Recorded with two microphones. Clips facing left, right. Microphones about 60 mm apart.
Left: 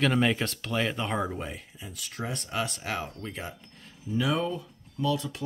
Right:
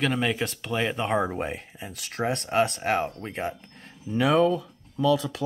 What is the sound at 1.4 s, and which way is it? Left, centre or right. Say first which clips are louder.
Speech: right 6 dB; right.